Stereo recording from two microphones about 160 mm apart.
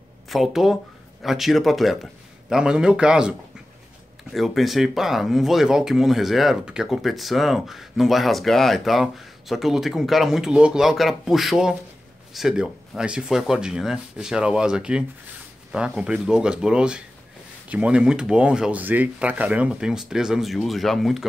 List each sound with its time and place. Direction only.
0.3 s speech: centre (ahead or behind)